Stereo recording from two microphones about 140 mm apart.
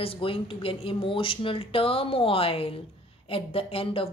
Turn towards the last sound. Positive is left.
turn(degrees=40)  # may be behind; listen again after turning